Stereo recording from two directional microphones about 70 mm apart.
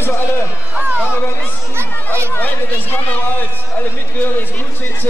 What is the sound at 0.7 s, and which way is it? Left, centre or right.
Run, right.